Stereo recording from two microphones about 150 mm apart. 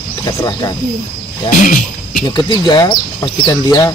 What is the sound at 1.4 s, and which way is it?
Roaring cats, 65° left (ahead or behind).